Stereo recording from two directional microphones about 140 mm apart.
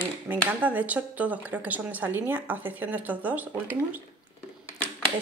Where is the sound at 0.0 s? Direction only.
10° right (ahead or behind).